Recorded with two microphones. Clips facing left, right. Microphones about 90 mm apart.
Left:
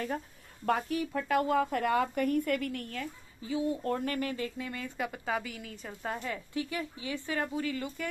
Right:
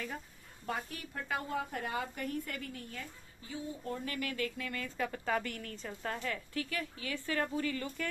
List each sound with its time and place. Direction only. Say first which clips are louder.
0.7 s speech: left 10 dB; 65° left (ahead or behind); by 4.3 s 45° left (ahead or behind)
4.3 s speech: left 2 dB; 20° left (ahead or behind)
7.3 s speech: left 1 dB; 10° left (ahead or behind)